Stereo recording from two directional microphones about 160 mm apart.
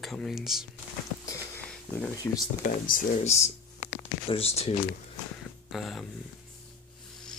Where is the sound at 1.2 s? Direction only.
20° left (ahead or behind).